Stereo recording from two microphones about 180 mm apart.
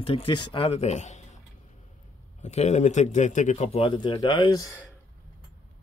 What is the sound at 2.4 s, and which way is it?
Speech, 40° left (ahead or behind).